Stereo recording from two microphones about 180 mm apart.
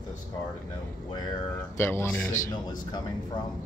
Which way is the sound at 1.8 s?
15° left (ahead or behind).